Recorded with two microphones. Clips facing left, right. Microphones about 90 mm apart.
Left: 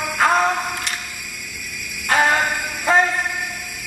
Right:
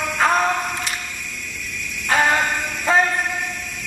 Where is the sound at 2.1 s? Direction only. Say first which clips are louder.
Left 1 dB; 5° left (ahead or behind).